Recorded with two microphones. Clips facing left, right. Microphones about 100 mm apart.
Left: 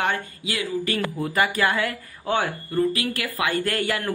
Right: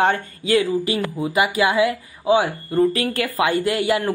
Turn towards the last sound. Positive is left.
turn(degrees=-20)  # may be behind; listen again after turning